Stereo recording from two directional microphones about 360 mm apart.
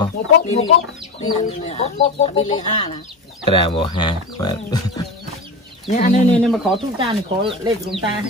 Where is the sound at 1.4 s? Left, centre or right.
Centre.